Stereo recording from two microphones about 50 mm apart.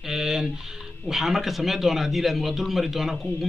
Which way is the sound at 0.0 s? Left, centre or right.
Centre.